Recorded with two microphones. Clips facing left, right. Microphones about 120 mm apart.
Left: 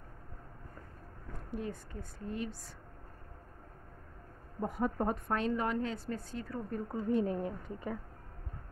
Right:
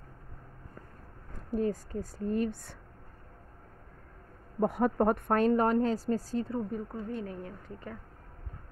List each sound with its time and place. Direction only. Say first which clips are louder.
1.5 s speech: right 10 dB; 40° right (ahead or behind)
4.6 s a woman's voice: right 7 dB; 70° right (ahead or behind); by 6.6 s 30° right (ahead or behind)
7.0 s a woman's voice: left 5 dB; 20° left (ahead or behind)